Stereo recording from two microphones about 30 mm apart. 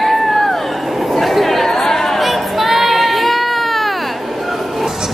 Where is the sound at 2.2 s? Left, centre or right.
Centre.